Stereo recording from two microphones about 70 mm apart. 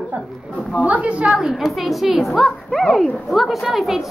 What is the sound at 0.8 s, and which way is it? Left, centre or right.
Speech, right.